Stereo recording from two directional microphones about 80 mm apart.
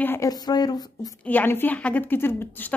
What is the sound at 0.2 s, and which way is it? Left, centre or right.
Speech, left.